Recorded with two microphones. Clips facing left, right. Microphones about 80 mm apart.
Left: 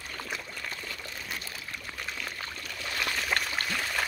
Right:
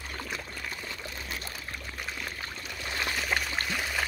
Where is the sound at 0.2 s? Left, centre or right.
Centre.